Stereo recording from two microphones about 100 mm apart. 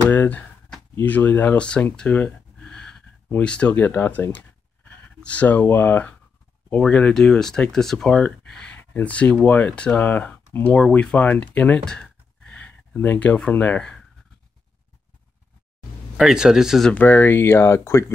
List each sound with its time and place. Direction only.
0.1 s speech: 20° left (ahead or behind)
2.0 s a sound: 15° left (ahead or behind)
3.3 s speech: 15° left (ahead or behind)
11.8 s a sound: 10° left (ahead or behind)
16.2 s a man's voice: 5° right (ahead or behind)
16.9 s speech: 15° left (ahead or behind)